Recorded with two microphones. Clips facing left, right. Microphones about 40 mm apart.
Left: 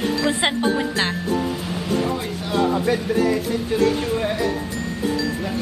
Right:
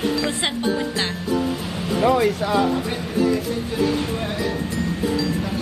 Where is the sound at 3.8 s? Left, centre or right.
Left.